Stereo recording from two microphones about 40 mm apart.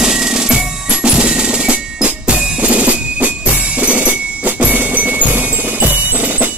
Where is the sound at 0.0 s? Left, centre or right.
Centre; by 4.7 s right.